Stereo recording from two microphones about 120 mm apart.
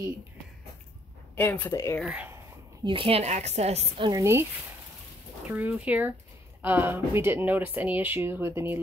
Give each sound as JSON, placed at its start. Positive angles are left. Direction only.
{"t": 1.3, "sound": "speech", "side_deg": 15}
{"t": 2.0, "sound": "speech", "side_deg": -10}
{"t": 2.8, "sound": "speech", "side_deg": -45}
{"t": 4.1, "sound": "speech", "side_deg": -25}
{"t": 5.5, "sound": "speech", "side_deg": -10}